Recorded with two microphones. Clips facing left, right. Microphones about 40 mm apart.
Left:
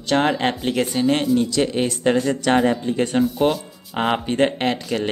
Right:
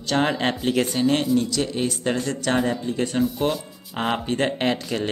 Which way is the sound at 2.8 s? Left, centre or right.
Left.